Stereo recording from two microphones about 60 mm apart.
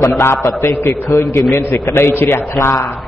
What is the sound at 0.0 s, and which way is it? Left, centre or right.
A man's voice, left.